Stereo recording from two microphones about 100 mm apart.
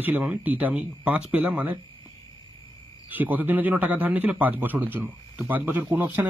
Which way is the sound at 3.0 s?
20° right (ahead or behind).